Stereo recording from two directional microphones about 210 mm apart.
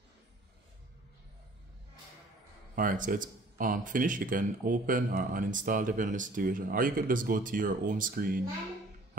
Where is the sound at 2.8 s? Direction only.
40° right (ahead or behind).